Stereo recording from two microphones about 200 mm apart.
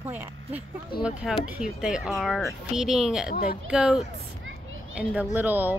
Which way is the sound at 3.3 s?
45° left (ahead or behind).